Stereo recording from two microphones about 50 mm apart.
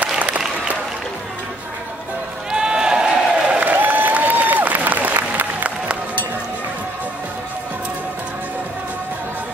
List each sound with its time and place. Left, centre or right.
0.0 s applause: right
2.5 s crowd: centre
3.5 s applause: right